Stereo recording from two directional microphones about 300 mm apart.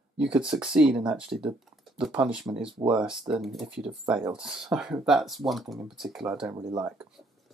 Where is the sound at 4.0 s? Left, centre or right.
Centre.